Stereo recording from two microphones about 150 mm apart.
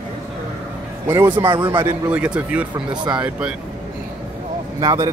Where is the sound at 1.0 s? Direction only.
15° right (ahead or behind).